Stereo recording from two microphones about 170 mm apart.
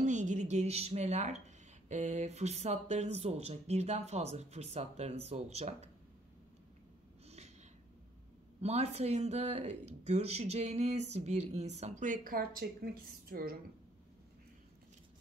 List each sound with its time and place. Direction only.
0.0 s a woman's voice: 45° right (ahead or behind)
7.2 s snort: 40° right (ahead or behind)
8.5 s speech: 40° right (ahead or behind); by 13.6 s 65° right (ahead or behind)